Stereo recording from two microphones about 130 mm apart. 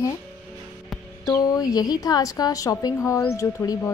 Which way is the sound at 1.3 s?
30° left (ahead or behind).